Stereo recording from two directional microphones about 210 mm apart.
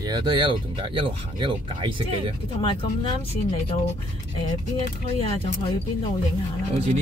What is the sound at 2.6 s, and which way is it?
Speech, 25° left (ahead or behind).